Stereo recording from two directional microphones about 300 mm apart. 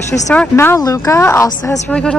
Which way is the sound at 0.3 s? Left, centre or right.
Centre.